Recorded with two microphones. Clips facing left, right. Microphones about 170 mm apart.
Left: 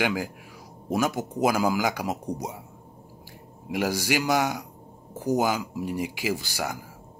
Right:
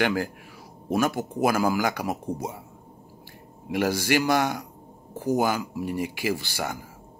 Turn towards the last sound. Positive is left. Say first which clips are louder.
# even
turn(degrees=10)  # may be behind; listen again after turning